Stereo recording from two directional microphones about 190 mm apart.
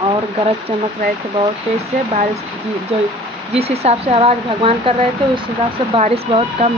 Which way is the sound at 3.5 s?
30° right (ahead or behind).